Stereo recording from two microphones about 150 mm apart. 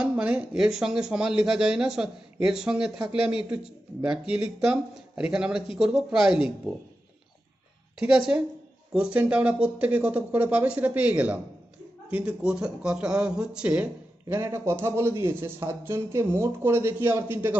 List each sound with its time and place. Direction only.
0.0 s speech: 10° right (ahead or behind)
8.3 s a man's voice: 10° right (ahead or behind)
14.3 s a man's voice: 20° right (ahead or behind)